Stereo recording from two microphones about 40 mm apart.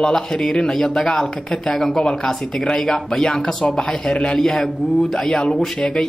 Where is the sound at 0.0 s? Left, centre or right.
Centre.